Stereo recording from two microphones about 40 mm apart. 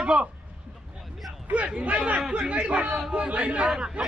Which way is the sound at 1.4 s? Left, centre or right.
Right.